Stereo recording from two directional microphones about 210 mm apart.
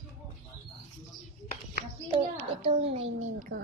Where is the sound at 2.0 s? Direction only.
25° right (ahead or behind).